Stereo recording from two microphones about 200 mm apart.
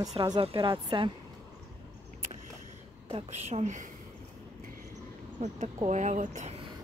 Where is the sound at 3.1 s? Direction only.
35° right (ahead or behind).